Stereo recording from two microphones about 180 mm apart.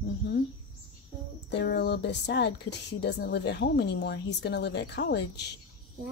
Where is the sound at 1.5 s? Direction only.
70° left (ahead or behind).